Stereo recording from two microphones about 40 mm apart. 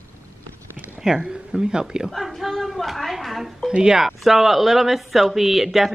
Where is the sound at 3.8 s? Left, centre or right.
Centre.